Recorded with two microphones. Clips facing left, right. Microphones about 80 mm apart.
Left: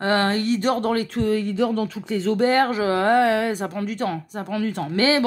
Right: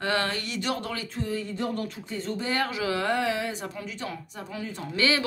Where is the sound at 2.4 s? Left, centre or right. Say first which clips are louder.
Left 9 dB; left.